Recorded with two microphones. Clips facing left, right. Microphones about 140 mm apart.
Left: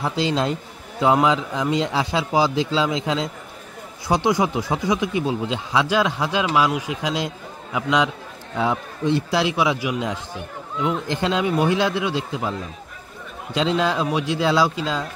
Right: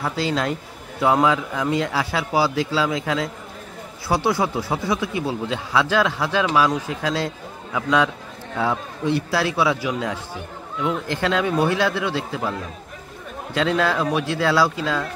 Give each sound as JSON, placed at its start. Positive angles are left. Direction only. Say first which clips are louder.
{"t": 0.0, "sound": "speech", "louder": "left 1 dB", "side_deg": 20}